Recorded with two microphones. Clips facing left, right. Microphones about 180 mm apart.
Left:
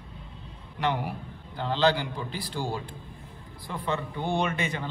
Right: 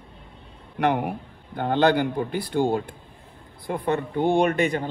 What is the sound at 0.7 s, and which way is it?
Speech, 60° right (ahead or behind).